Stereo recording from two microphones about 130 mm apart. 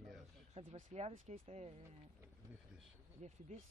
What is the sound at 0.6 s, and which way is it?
Speech, 60° right (ahead or behind).